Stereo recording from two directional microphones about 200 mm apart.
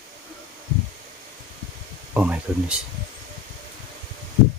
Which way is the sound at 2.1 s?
5° right (ahead or behind).